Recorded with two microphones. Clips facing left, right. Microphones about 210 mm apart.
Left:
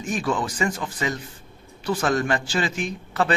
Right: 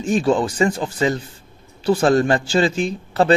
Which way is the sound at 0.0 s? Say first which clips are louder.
Right 8 dB; 30° right (ahead or behind).